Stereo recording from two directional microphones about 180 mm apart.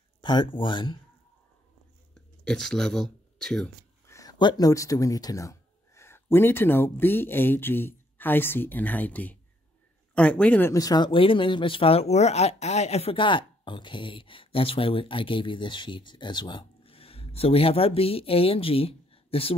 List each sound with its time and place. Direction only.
0.2 s speech: 25° left (ahead or behind)
2.1 s speech: 5° left (ahead or behind)
4.1 s speech: 20° left (ahead or behind)